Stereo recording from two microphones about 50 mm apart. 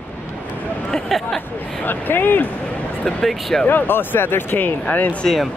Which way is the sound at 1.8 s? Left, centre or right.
Left.